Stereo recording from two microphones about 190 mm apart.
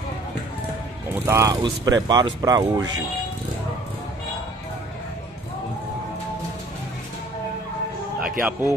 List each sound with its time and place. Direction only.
1.0 s speech: 10° right (ahead or behind)
8.2 s music: 5° right (ahead or behind)